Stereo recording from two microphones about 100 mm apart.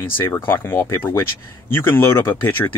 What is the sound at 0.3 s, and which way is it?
Speech, 25° left (ahead or behind).